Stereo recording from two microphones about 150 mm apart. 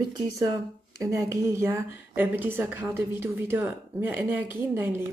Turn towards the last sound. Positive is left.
turn(degrees=-15)  # may be behind; listen again after turning